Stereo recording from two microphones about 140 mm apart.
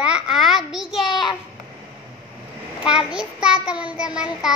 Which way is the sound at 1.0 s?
35° left (ahead or behind).